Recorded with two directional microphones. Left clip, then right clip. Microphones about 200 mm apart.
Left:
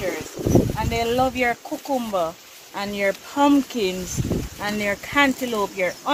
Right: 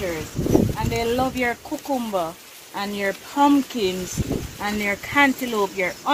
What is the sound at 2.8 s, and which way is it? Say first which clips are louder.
Speech: left 2 dB; 65° left (ahead or behind).